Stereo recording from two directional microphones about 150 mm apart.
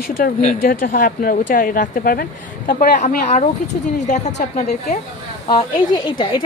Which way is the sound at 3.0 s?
55° left (ahead or behind).